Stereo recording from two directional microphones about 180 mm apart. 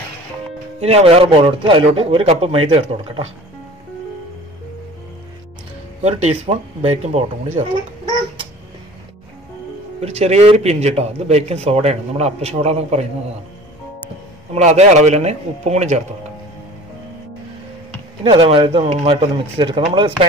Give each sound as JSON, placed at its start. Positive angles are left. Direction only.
{"t": 0.7, "sound": "a man's voice", "side_deg": -35}
{"t": 6.0, "sound": "a man's voice", "side_deg": -35}
{"t": 9.9, "sound": "a man's voice", "side_deg": -35}
{"t": 14.5, "sound": "a man's voice", "side_deg": -40}
{"t": 18.2, "sound": "speech", "side_deg": -30}